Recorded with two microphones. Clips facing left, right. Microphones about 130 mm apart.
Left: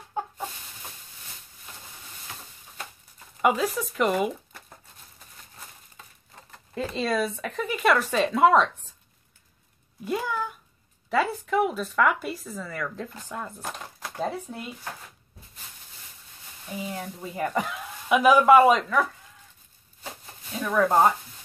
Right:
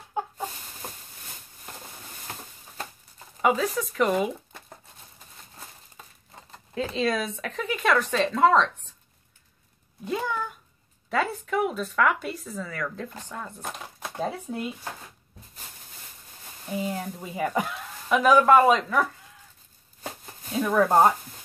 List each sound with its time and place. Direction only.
0.8 s a sound: 45° right (ahead or behind)
3.4 s speech: centre (ahead or behind)
6.7 s speech: centre (ahead or behind)
10.0 s a sound: 5° left (ahead or behind)
11.1 s speech: centre (ahead or behind)
17.3 s speech: 5° right (ahead or behind)
18.0 s speech: 10° left (ahead or behind)
20.6 s speech: 10° right (ahead or behind)